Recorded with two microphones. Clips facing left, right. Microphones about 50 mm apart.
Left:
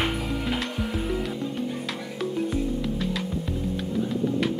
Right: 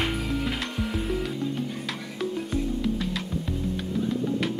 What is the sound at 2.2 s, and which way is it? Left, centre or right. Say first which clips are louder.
Music: left 2 dB; centre.